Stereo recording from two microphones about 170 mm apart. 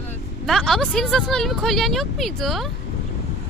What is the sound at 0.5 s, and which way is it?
Speech, centre (ahead or behind).